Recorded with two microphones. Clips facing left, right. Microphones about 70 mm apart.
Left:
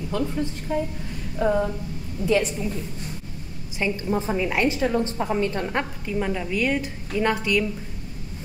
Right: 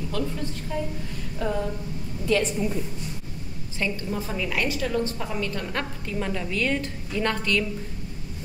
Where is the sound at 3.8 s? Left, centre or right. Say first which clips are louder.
Left 4 dB; left.